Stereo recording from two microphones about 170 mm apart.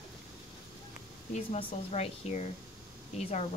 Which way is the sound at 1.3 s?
40° left (ahead or behind).